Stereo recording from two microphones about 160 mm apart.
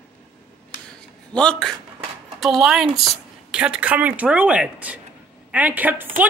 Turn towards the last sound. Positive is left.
turn(degrees=-10)  # may be behind; listen again after turning